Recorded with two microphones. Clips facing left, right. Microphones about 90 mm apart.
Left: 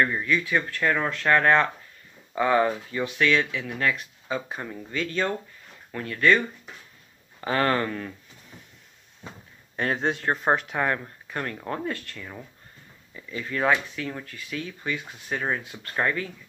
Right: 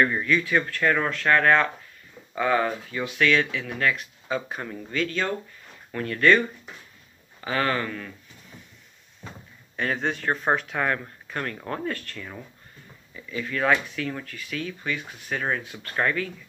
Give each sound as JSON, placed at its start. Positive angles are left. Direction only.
{"t": 0.2, "sound": "speech", "side_deg": 15}
{"t": 5.0, "sound": "speech", "side_deg": 20}
{"t": 5.9, "sound": "speech", "side_deg": 10}
{"t": 7.3, "sound": "speech", "side_deg": 35}
{"t": 9.2, "sound": "speech", "side_deg": 15}
{"t": 13.3, "sound": "speech", "side_deg": 25}